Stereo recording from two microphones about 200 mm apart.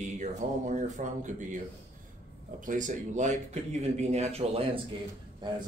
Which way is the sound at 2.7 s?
40° right (ahead or behind).